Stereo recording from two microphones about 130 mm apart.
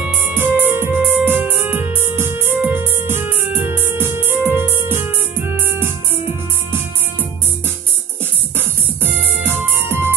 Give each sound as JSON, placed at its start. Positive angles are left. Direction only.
{"t": 0.0, "sound": "music", "side_deg": -15}
{"t": 8.5, "sound": "music", "side_deg": -15}